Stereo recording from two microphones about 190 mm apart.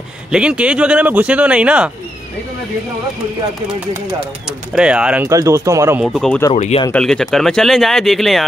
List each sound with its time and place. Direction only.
0.3 s speech: 5° right (ahead or behind)
4.5 s speech: 5° right (ahead or behind)
5.3 s speech: 15° right (ahead or behind)
6.0 s speech: 5° left (ahead or behind)
6.5 s speech: 35° left (ahead or behind)
6.9 s speech: 5° left (ahead or behind)